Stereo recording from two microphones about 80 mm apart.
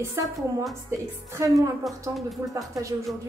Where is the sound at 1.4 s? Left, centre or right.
Right.